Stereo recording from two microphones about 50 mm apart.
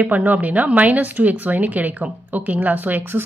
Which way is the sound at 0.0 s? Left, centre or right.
Right.